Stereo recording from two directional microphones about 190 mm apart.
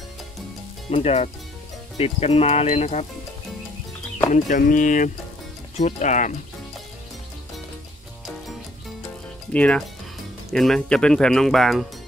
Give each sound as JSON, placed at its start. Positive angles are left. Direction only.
{"t": 0.8, "sound": "speech", "side_deg": 30}
{"t": 4.3, "sound": "speech", "side_deg": 45}
{"t": 9.5, "sound": "speech", "side_deg": 5}